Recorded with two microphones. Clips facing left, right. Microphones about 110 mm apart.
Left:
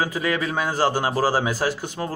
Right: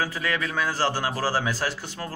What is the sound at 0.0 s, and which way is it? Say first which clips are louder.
Speech: left 4 dB; 15° left (ahead or behind).